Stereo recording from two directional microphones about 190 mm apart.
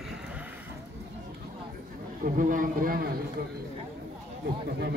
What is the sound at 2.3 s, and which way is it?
Speech, 45° right (ahead or behind).